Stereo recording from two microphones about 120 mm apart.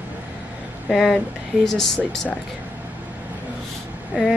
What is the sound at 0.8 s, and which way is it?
Speech, 5° left (ahead or behind).